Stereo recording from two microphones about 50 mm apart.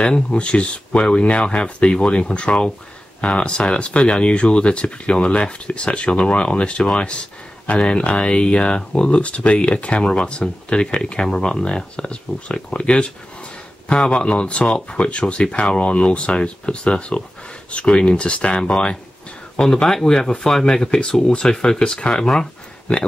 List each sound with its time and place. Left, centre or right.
0.0 s speech: left